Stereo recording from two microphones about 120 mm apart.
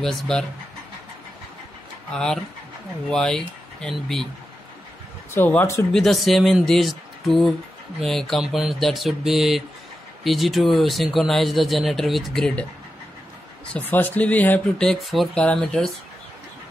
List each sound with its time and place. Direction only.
0.0 s speech: 5° left (ahead or behind)
2.1 s speech: 5° left (ahead or behind)
5.3 s speech: 20° left (ahead or behind)
5.9 s speech: centre (ahead or behind)
13.7 s speech: 15° left (ahead or behind)
14.9 s speech: centre (ahead or behind)